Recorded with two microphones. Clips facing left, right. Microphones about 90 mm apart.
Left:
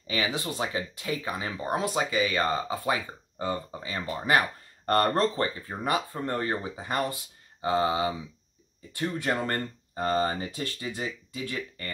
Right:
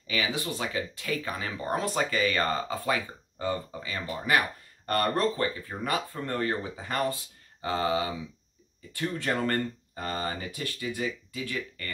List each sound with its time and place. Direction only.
0.0 s speech: 30° left (ahead or behind); by 2.8 s 10° left (ahead or behind)
2.8 s speech: 25° left (ahead or behind)